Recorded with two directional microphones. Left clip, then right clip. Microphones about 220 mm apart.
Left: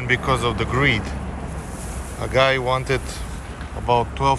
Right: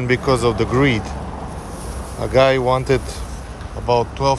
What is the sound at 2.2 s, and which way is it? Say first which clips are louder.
Speech: right 4 dB; 25° right (ahead or behind).